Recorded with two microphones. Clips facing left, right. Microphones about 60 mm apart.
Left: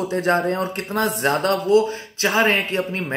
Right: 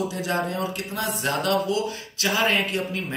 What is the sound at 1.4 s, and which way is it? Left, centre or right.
A man's voice, left.